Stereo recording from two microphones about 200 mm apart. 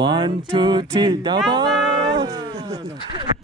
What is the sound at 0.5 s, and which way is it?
Cat, 25° right (ahead or behind).